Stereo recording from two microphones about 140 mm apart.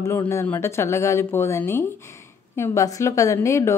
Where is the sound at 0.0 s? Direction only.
20° left (ahead or behind).